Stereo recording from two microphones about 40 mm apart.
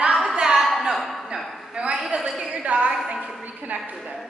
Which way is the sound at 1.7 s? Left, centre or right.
Right.